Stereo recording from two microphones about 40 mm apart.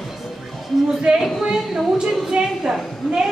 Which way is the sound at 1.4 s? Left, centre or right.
Centre.